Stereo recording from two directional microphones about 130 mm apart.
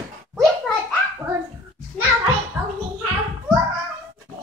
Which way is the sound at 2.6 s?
15° right (ahead or behind).